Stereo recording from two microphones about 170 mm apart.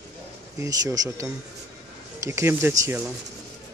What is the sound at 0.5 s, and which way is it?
Speech, 20° right (ahead or behind).